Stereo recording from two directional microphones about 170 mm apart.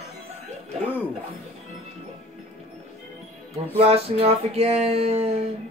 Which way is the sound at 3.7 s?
35° right (ahead or behind).